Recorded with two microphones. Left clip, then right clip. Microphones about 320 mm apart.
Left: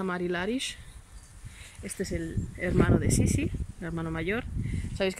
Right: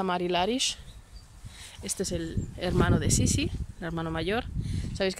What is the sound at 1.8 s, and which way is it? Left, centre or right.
Speech, centre.